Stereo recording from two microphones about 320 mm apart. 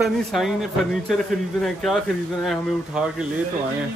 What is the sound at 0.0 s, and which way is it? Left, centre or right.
Speech, centre.